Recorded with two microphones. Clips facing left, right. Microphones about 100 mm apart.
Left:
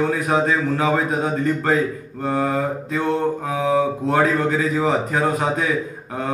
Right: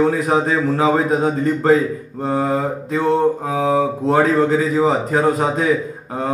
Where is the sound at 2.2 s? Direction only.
25° right (ahead or behind).